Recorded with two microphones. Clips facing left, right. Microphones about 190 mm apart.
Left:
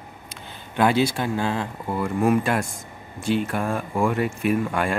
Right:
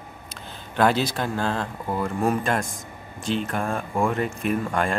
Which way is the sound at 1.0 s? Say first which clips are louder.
Left 1 dB; 10° left (ahead or behind).